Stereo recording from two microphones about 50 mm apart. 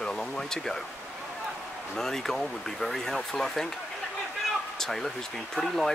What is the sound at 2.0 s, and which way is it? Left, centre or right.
Speech, centre.